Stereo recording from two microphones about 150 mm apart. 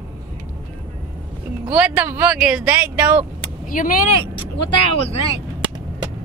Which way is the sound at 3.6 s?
65° left (ahead or behind).